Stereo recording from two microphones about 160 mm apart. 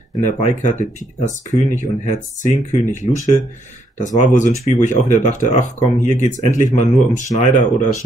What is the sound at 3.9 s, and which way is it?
Speech, 50° left (ahead or behind).